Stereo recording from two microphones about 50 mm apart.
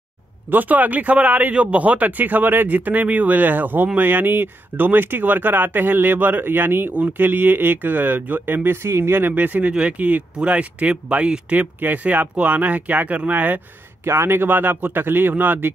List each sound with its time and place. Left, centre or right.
0.5 s speech: right
8.6 s speech: right
11.5 s speech: right
14.0 s speech: right